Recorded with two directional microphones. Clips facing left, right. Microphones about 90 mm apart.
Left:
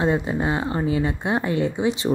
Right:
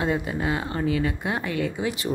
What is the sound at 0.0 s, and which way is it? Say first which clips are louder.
A woman's voice: left 4 dB; 25° left (ahead or behind).